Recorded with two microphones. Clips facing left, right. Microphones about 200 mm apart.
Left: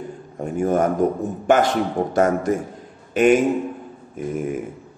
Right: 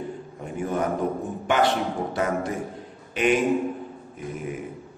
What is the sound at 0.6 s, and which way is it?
A man's voice, 45° left (ahead or behind).